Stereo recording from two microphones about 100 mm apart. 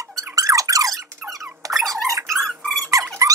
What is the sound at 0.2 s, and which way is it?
Squeak, 30° right (ahead or behind).